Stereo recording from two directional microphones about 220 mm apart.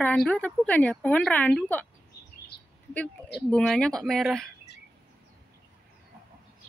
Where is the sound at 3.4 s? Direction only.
5° left (ahead or behind).